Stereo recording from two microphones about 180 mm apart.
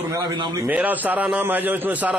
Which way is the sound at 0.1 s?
20° right (ahead or behind).